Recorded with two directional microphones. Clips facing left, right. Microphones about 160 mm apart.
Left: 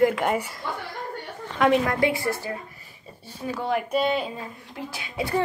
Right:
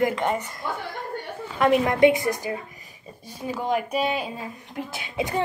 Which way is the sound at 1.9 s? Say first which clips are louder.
Right 5 dB; 20° right (ahead or behind).